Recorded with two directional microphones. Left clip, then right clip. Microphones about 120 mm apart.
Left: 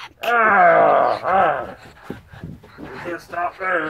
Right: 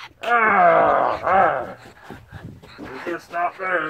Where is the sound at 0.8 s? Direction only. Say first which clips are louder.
Left 2 dB; 55° left (ahead or behind).